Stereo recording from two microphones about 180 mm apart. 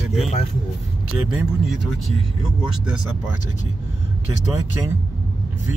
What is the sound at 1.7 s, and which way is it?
Speech, centre (ahead or behind).